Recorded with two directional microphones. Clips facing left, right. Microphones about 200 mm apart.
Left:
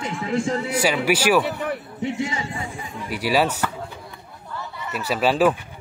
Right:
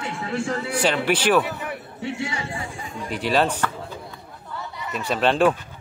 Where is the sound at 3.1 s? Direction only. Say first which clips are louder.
Left 1 dB; 10° left (ahead or behind).